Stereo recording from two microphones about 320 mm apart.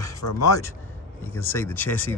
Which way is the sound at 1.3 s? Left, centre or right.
Centre.